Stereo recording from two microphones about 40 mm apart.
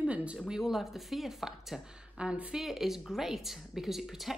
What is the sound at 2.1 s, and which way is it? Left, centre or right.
Speech, right.